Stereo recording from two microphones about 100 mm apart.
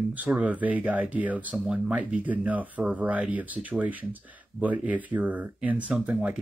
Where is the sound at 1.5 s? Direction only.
5° right (ahead or behind).